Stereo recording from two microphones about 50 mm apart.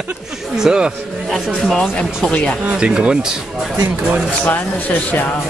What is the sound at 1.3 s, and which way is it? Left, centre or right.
Speech, centre.